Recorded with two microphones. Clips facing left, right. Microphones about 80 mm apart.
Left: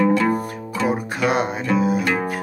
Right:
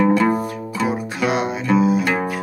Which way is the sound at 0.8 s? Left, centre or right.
Left.